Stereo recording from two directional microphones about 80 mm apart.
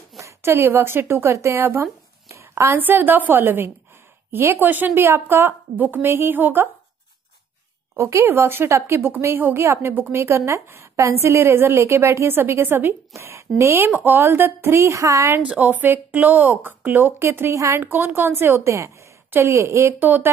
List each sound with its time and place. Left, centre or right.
0.2 s a woman's voice: right
2.8 s a woman's voice: right
8.0 s a woman's voice: right
15.6 s a woman's voice: right
17.8 s a woman's voice: right
20.0 s a woman's voice: right